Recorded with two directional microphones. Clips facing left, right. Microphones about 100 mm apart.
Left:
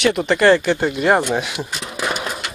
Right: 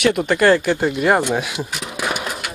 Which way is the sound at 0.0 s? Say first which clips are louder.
Even; 10° right (ahead or behind).